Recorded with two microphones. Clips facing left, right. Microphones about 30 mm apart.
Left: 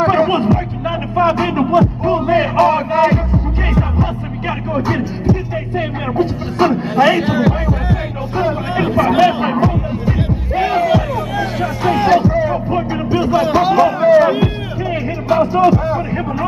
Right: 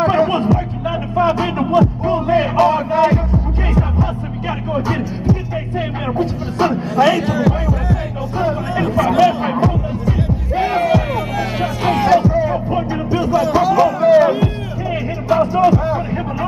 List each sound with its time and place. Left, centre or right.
0.0 s music: centre
12.0 s music: centre
13.2 s a sound: left
14.2 s music: left